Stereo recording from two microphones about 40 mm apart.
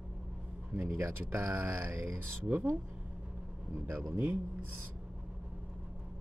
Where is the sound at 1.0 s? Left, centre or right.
Right.